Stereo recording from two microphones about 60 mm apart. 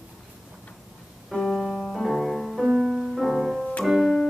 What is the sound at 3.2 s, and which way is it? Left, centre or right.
Music, centre.